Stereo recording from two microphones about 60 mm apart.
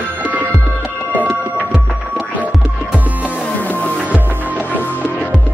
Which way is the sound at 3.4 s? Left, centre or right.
Left.